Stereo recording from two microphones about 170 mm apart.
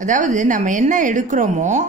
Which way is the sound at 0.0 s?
45° right (ahead or behind).